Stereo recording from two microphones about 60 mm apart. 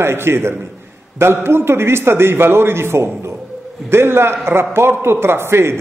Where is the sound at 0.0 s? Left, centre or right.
Right.